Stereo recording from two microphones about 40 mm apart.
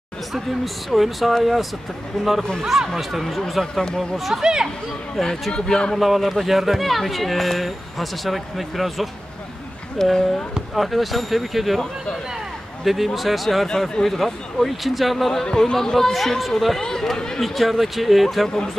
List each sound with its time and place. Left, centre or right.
0.3 s speech: centre
2.1 s speech: centre
2.9 s speech: centre
3.8 s speech: centre
4.4 s speech: centre
5.1 s speech: centre
5.5 s a man's voice: centre
5.9 s speech: centre
10.0 s speech: centre
10.7 s speech: centre
12.8 s speech: centre
15.5 s speech: centre
17.4 s speech: centre